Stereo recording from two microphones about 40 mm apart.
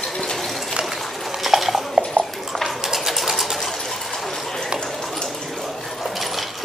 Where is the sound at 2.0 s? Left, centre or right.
Right.